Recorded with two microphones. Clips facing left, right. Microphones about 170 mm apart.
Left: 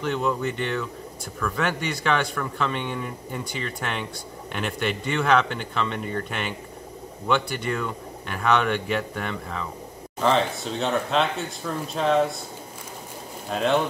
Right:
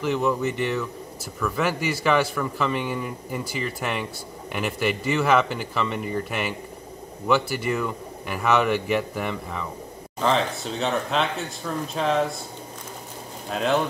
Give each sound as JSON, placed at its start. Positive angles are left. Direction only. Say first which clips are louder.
{"t": 0.0, "sound": "a man's voice", "louder": "right 2 dB", "side_deg": -5}
{"t": 13.5, "sound": "a man's voice", "louder": "left 1 dB", "side_deg": 0}